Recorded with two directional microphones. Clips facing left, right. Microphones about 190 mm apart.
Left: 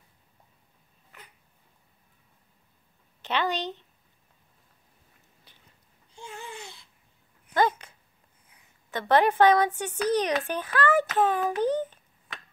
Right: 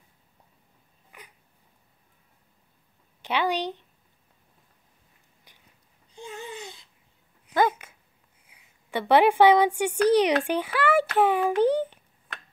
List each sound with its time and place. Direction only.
3.2 s a woman's voice: 10° right (ahead or behind)
6.1 s babbling: 20° right (ahead or behind)
7.5 s dog: 10° right (ahead or behind)
8.5 s a child's voice: 10° right (ahead or behind)
11.7 s a sound: 10° right (ahead or behind)